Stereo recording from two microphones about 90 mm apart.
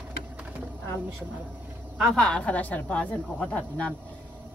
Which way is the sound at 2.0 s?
5° left (ahead or behind).